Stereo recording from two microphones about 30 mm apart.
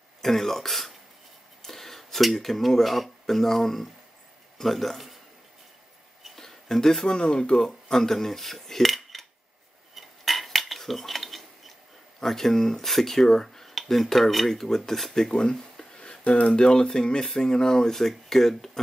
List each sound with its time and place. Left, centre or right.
0.2 s speech: centre
6.4 s a sound: centre
7.2 s speech: left
7.6 s cutlery: centre
12.2 s speech: centre
13.7 s speech: centre
15.3 s a sound: left
16.0 s speech: left; by 18.7 s centre